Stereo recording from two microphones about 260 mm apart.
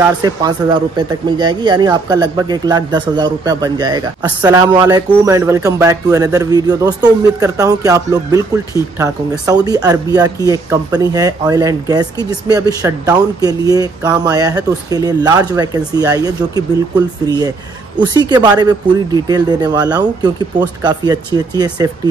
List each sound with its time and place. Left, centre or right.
0.2 s speech: centre
18.1 s speech: centre